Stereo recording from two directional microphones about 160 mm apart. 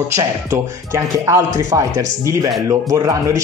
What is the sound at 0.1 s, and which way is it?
Speech, 20° right (ahead or behind).